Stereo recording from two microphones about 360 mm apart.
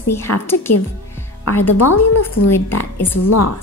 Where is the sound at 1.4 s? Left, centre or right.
Left.